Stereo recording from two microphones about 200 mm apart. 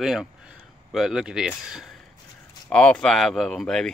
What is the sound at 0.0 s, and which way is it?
Speech, centre (ahead or behind).